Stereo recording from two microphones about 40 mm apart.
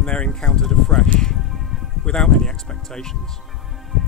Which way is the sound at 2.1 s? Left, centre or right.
Centre.